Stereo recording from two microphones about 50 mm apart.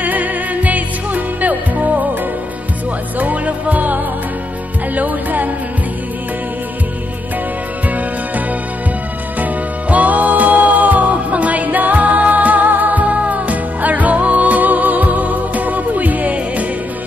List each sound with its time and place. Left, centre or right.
0.0 s music: right
3.2 s music: right
9.4 s music: right